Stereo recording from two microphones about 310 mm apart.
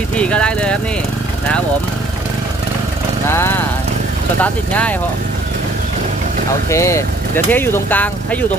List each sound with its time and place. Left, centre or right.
0.1 s speech: centre
3.3 s speech: centre
6.7 s speech: centre